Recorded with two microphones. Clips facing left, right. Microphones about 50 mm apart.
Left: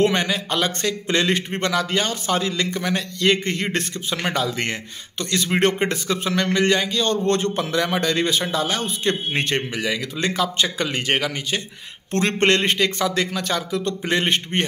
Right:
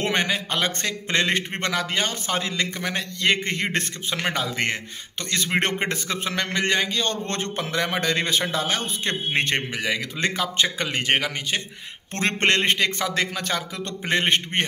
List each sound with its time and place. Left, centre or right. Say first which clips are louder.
0.0 s speech: left 4 dB; right
5.8 s a man's voice: left 4 dB; right